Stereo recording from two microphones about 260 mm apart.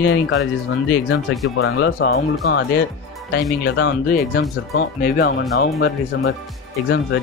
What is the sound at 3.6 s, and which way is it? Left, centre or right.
Speech, left.